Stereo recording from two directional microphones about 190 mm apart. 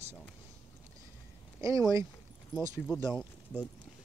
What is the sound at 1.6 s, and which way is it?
Speech, 15° right (ahead or behind).